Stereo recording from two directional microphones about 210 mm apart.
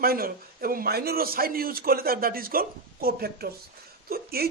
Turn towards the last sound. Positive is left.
turn(degrees=-45)  # may be behind; listen again after turning